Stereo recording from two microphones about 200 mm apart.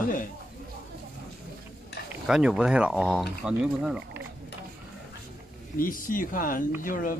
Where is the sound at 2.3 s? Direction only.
5° right (ahead or behind).